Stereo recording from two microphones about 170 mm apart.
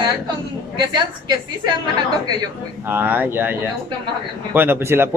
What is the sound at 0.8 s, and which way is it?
Speech, 25° right (ahead or behind).